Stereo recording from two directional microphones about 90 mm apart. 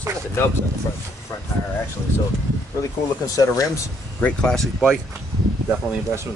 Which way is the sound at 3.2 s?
40° left (ahead or behind).